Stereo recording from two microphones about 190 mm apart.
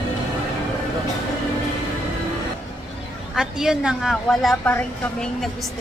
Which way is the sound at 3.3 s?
5° right (ahead or behind).